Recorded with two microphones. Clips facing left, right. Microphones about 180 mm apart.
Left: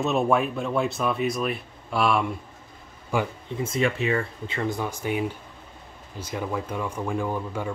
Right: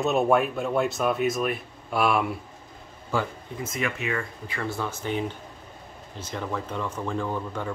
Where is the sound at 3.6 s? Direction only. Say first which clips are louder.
Left 5 dB; 30° left (ahead or behind); by 7.7 s 10° left (ahead or behind).